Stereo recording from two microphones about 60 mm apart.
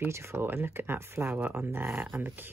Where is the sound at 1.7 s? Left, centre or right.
Right.